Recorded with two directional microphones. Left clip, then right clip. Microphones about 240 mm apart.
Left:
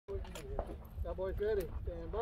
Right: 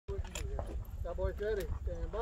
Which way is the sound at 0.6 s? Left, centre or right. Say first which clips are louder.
Left 4 dB; left.